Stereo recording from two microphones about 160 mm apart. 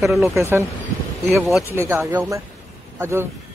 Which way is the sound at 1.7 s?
15° right (ahead or behind).